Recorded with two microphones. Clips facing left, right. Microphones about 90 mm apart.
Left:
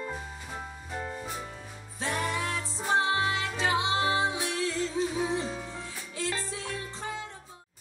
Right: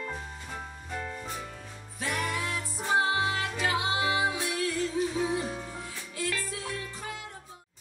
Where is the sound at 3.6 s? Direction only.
25° left (ahead or behind).